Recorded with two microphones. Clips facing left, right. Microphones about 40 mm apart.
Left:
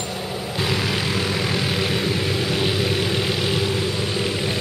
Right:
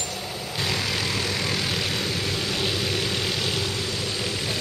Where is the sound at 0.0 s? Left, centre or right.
Centre.